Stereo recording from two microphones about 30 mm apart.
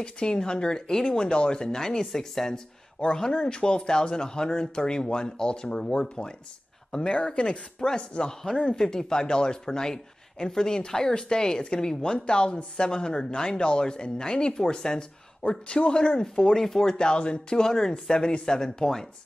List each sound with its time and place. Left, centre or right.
0.0 s speech: left
0.9 s speech: centre
1.2 s speech: left; by 2.6 s centre
3.1 s speech: left
8.3 s speech: centre
15.6 s speech: left
16.5 s speech: centre
16.9 s speech: left
17.6 s speech: centre
18.2 s speech: left
18.5 s speech: centre